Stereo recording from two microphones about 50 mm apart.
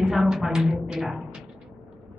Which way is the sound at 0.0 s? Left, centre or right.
Centre.